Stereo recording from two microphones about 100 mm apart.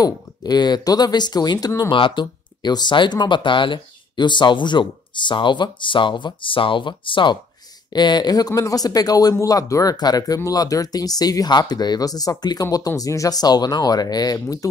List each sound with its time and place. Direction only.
0.0 s speech: 45° left (ahead or behind)
1.9 s speech: 55° left (ahead or behind); by 14.7 s 35° left (ahead or behind)